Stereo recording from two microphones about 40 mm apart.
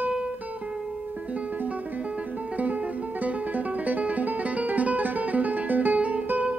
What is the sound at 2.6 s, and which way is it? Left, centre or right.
Music, right.